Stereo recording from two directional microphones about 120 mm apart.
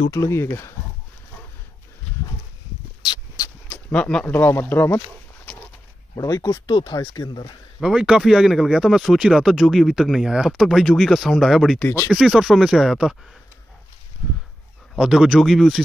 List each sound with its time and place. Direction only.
0.1 s speech: 25° left (ahead or behind)
3.1 s a sound: 30° left (ahead or behind)
3.6 s a sound: 10° left (ahead or behind)
4.3 s speech: 20° left (ahead or behind)
6.1 s speech: 30° left (ahead or behind)
7.8 s speech: 5° right (ahead or behind)
15.0 s speech: 5° right (ahead or behind)